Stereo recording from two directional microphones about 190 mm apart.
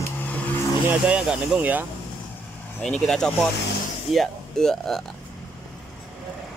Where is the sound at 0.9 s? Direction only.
5° right (ahead or behind).